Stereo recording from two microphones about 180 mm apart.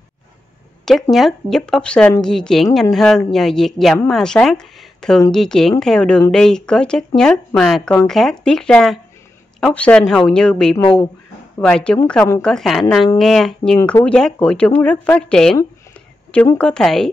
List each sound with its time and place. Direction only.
1.1 s a woman's voice: centre (ahead or behind)
10.8 s speech: 25° left (ahead or behind)
11.6 s a woman's voice: 5° left (ahead or behind)